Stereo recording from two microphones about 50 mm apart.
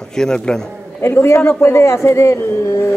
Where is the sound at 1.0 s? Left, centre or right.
Left.